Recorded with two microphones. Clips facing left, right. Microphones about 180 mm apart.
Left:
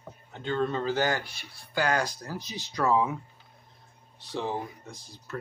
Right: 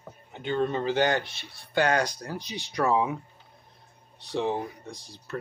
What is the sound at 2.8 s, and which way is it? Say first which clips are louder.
Speech: right 1 dB; 20° right (ahead or behind).